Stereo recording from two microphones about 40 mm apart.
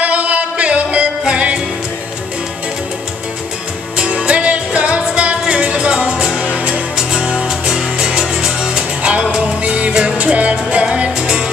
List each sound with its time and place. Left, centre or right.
0.0 s music: right
3.9 s music: right
7.1 s music: right
9.0 s music: right